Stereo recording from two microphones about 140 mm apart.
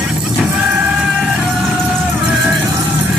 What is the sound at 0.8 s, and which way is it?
Music, 10° right (ahead or behind).